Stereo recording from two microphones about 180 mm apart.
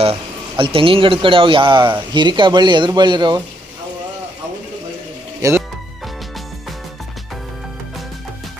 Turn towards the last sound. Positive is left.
turn(degrees=0)  # may be behind; listen again after turning